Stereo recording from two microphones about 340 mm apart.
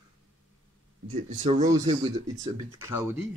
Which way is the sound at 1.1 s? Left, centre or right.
Right.